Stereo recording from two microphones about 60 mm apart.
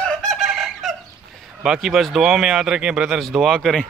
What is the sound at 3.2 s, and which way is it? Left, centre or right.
Speech, centre.